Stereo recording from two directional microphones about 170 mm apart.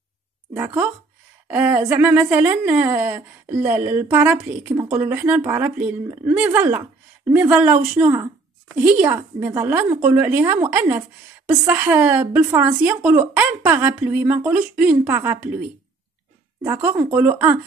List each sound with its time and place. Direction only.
0.6 s speech: 10° right (ahead or behind)
12.4 s a woman's voice: 20° right (ahead or behind)
12.6 s speech: 10° right (ahead or behind)
16.7 s speech: 10° right (ahead or behind)